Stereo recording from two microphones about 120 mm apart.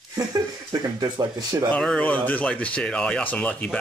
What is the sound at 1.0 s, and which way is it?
Speech, 35° right (ahead or behind).